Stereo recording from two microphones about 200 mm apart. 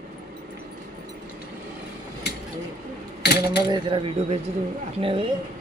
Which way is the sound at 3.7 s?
25° right (ahead or behind).